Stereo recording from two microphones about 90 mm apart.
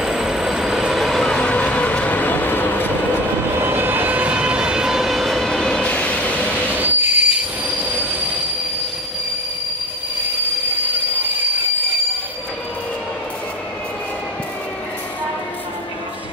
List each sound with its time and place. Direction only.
0.0 s train: 5° right (ahead or behind); by 2.9 s 20° left (ahead or behind)
3.6 s vehicle: 20° right (ahead or behind); by 6.8 s 15° left (ahead or behind)
6.8 s train wheels squealing: 20° right (ahead or behind)
10.9 s train: 20° right (ahead or behind)